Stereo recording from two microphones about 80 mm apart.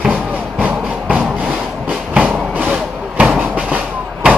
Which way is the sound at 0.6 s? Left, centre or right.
Centre.